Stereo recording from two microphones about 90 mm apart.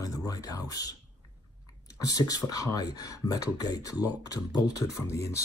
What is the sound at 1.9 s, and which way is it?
Speech, 45° left (ahead or behind).